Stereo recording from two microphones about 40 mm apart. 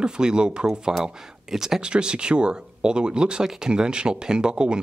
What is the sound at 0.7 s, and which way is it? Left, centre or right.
Speech, centre.